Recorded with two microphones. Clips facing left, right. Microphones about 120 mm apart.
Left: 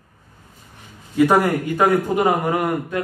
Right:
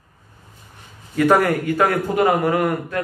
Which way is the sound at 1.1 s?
15° left (ahead or behind).